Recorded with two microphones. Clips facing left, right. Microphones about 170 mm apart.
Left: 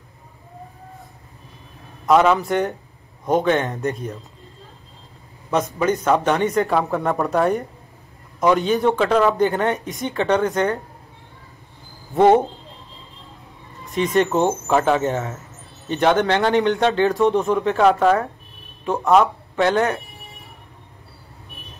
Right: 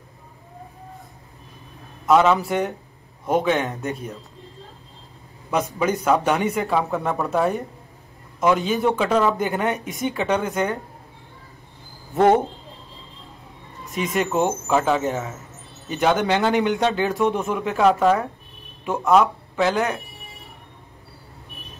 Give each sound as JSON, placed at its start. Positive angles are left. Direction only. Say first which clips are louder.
{"t": 2.0, "sound": "speech", "louder": "left 1 dB", "side_deg": 0}
{"t": 5.8, "sound": "speech", "louder": "left 1 dB", "side_deg": -10}
{"t": 13.9, "sound": "speech", "louder": "left 4 dB", "side_deg": -5}
{"t": 16.5, "sound": "speech", "louder": "left 3 dB", "side_deg": -15}
{"t": 16.8, "sound": "speech", "louder": "left 3 dB", "side_deg": 0}